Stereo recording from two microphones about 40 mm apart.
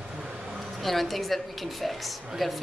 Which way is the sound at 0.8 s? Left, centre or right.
Centre.